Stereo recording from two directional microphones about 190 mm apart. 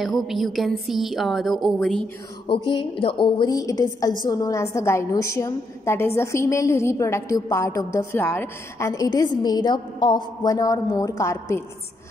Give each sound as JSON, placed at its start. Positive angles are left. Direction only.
{"t": 0.0, "sound": "speech", "side_deg": 0}
{"t": 2.4, "sound": "a woman's voice", "side_deg": 25}